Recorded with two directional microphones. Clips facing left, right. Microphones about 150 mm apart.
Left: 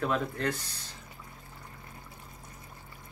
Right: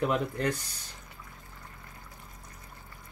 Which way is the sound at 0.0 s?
15° right (ahead or behind).